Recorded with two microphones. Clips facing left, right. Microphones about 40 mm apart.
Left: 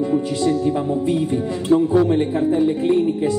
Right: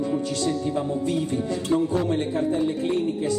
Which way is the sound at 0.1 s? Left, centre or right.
Centre.